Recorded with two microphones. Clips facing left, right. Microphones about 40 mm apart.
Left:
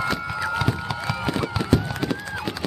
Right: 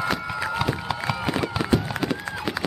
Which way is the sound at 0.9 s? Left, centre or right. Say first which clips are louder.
Even; centre.